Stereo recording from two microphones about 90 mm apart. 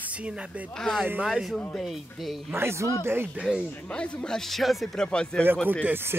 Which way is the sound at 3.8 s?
10° left (ahead or behind).